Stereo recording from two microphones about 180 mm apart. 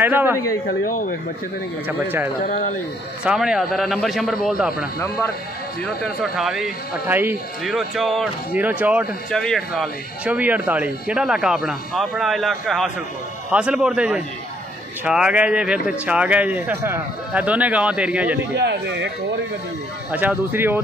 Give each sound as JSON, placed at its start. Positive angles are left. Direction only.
{"t": 0.0, "sound": "speech", "side_deg": -10}
{"t": 0.7, "sound": "speech", "side_deg": 50}
{"t": 3.3, "sound": "speech", "side_deg": -5}
{"t": 5.9, "sound": "speech", "side_deg": 0}
{"t": 9.3, "sound": "speech", "side_deg": 5}
{"t": 18.6, "sound": "speech", "side_deg": -75}
{"t": 20.1, "sound": "speech", "side_deg": -10}